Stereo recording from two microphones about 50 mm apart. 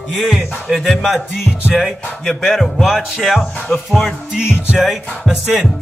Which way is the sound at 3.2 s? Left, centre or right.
Centre.